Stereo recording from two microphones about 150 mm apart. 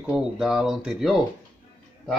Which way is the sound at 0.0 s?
5° right (ahead or behind).